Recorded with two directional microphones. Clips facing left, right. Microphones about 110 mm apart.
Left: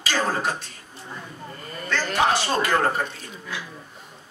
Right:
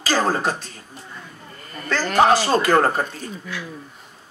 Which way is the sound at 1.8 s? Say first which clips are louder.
Right 6 dB; 35° right (ahead or behind).